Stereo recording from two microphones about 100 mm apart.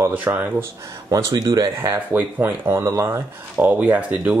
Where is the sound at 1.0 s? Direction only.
40° right (ahead or behind).